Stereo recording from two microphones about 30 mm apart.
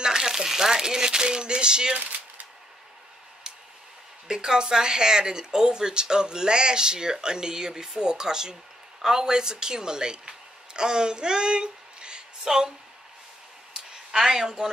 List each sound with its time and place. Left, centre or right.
0.0 s speech: right
2.0 s a sound: right
4.3 s a woman's voice: right
12.4 s speech: centre
14.2 s speech: centre